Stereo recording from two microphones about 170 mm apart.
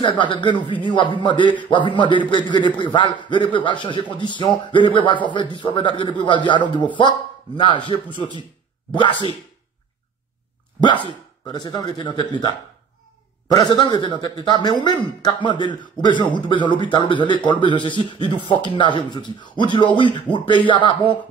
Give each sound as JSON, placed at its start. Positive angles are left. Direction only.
{"t": 0.0, "sound": "speech", "side_deg": 30}
{"t": 10.8, "sound": "speech", "side_deg": 25}